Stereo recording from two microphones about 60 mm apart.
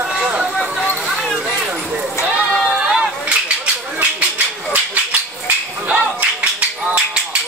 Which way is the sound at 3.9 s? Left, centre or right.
Right.